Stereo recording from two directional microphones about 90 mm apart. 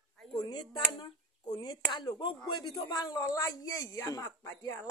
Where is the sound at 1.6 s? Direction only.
55° left (ahead or behind).